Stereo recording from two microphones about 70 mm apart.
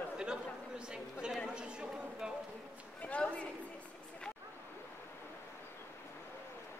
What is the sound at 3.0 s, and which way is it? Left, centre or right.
Speech, left.